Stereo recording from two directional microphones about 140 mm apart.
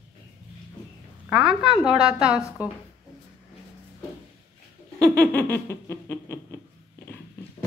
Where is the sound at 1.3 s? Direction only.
5° right (ahead or behind).